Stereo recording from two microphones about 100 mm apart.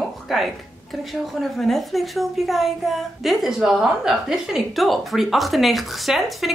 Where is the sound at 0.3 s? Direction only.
Centre (ahead or behind).